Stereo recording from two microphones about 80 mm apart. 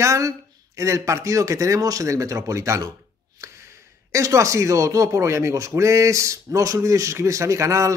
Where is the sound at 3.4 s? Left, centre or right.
Right.